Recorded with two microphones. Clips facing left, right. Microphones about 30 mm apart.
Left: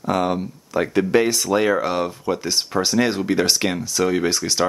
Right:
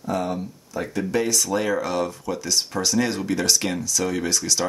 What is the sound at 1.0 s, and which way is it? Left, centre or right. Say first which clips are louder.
Speech: left 4 dB; left.